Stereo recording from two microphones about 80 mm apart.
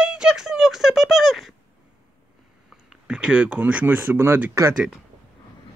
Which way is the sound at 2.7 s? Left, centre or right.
Centre.